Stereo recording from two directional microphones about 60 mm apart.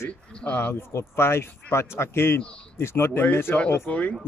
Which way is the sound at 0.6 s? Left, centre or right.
Left.